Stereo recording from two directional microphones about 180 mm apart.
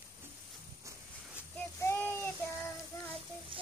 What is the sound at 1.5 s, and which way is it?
Child singing, 10° left (ahead or behind).